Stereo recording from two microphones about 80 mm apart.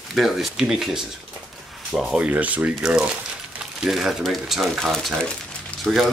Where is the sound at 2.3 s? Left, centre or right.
Centre.